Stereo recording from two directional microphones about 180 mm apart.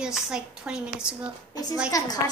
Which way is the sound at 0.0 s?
5° right (ahead or behind).